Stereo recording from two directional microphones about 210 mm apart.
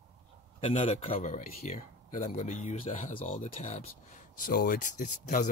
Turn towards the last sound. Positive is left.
turn(degrees=40)  # may be behind; listen again after turning